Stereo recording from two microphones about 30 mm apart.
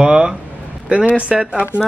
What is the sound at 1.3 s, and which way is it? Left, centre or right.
Speech, right.